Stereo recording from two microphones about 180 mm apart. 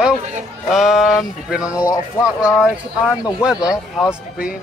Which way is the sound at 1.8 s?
15° left (ahead or behind).